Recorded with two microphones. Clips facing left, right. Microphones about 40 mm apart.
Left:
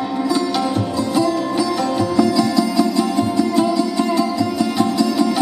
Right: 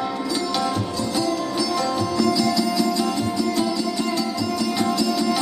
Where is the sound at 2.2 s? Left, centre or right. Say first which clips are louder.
Left 5 dB; centre.